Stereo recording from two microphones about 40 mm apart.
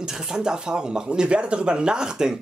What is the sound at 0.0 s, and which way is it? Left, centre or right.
Speech, centre.